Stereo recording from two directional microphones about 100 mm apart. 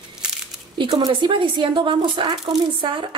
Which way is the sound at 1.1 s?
55° right (ahead or behind).